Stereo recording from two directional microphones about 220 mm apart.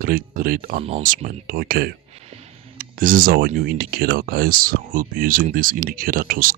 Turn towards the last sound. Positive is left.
turn(degrees=-40)  # may be behind; listen again after turning